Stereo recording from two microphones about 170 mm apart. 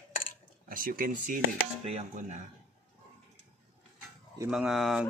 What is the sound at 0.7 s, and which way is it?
Speech, 55° right (ahead or behind).